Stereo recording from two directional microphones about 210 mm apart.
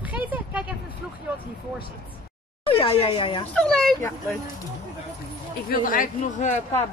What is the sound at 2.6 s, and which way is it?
Speech, 25° left (ahead or behind).